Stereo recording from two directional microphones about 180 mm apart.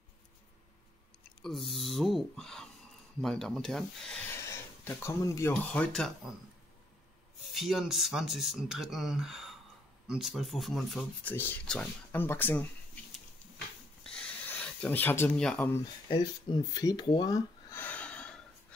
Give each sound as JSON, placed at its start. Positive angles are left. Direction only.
{"t": 1.4, "sound": "speech", "side_deg": 0}
{"t": 5.5, "sound": "speech", "side_deg": 5}
{"t": 7.5, "sound": "speech", "side_deg": 0}
{"t": 14.0, "sound": "a sound", "side_deg": 5}
{"t": 16.1, "sound": "speech", "side_deg": 25}